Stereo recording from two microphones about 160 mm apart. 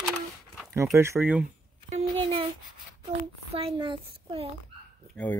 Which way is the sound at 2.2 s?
35° right (ahead or behind).